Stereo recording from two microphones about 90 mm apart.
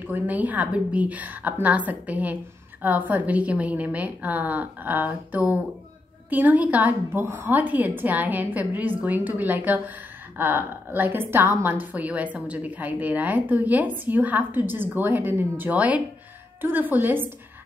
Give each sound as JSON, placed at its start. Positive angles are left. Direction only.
{"t": 0.0, "sound": "a woman's voice", "side_deg": -20}